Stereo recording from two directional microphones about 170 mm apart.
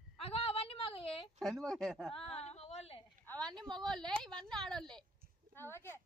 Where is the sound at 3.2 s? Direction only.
5° left (ahead or behind).